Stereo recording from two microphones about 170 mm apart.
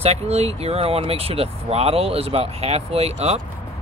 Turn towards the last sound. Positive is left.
turn(degrees=-35)  # may be behind; listen again after turning